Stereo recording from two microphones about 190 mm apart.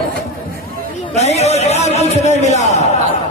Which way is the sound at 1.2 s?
35° left (ahead or behind).